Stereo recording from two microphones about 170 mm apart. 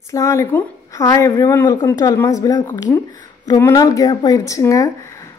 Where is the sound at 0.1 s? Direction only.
20° left (ahead or behind).